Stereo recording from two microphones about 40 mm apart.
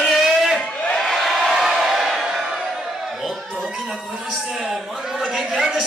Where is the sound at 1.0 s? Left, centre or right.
Centre.